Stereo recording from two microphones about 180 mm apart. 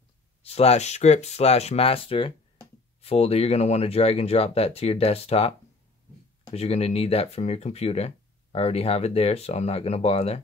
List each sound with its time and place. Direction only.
0.4 s speech: 35° left (ahead or behind)
6.5 s speech: 35° left (ahead or behind)